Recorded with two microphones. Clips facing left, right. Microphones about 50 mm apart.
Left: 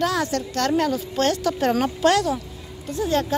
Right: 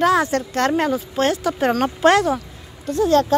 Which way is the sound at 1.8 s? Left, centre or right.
Right.